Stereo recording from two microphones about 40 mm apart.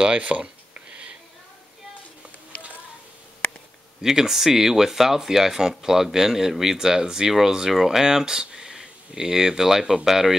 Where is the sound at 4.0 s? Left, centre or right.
Centre.